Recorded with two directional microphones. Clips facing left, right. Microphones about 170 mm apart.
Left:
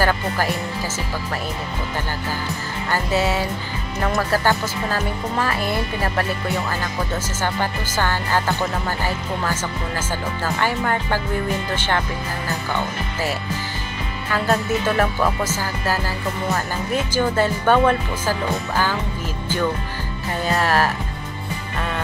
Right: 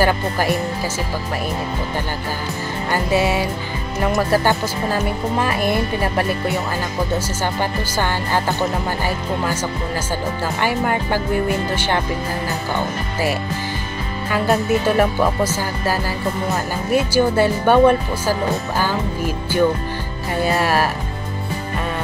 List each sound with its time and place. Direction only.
2.9 s speech: 15° right (ahead or behind)
7.4 s speech: 15° right (ahead or behind)
14.3 s speech: 15° right (ahead or behind)
16.9 s speech: 10° right (ahead or behind)